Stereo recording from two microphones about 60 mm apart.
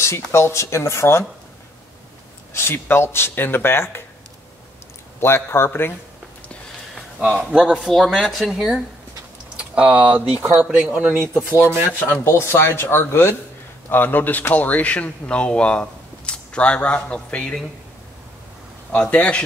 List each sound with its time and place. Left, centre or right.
0.3 s speech: left
2.5 s speech: left
5.2 s speech: left
7.3 s speech: centre
7.8 s speech: centre
9.6 s speech: right
11.5 s speech: right
12.1 s speech: left; by 17.6 s centre
18.9 s speech: left